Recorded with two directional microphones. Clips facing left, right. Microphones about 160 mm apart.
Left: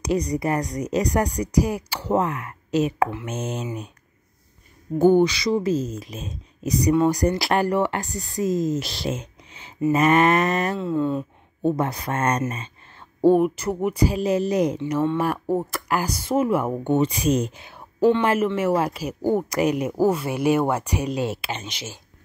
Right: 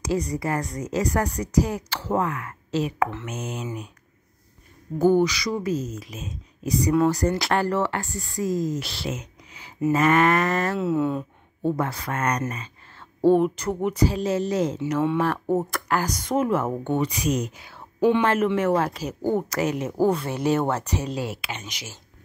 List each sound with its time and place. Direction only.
0.4 s speech: 20° left (ahead or behind)
4.9 s speech: 25° left (ahead or behind)
9.0 s a sound: 30° left (ahead or behind)
9.9 s speech: 20° left (ahead or behind)
10.8 s speech: 5° right (ahead or behind)
11.6 s speech: 20° left (ahead or behind)
13.2 s speech: 10° left (ahead or behind)
17.0 s speech: 30° left (ahead or behind)
18.2 s speech: 10° left (ahead or behind)
21.3 s speech: 30° left (ahead or behind)